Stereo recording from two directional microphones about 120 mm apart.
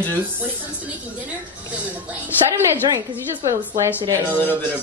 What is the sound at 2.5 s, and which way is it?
A woman's voice, 25° right (ahead or behind).